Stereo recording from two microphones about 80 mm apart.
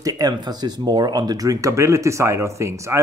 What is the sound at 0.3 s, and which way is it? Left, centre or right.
Speech, right.